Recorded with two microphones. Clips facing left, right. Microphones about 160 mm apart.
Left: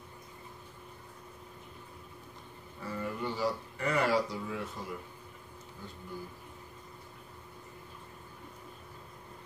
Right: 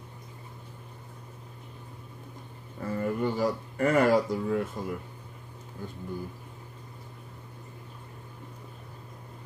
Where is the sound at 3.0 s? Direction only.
50° right (ahead or behind).